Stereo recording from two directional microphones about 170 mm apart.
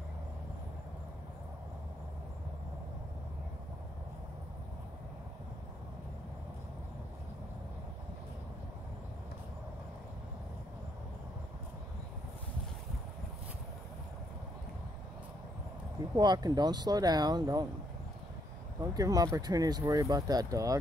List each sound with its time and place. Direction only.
16.2 s speech: 25° right (ahead or behind)
18.8 s speech: 20° right (ahead or behind)